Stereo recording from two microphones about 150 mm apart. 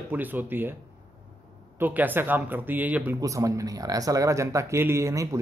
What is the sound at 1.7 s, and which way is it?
A man's voice, 10° right (ahead or behind).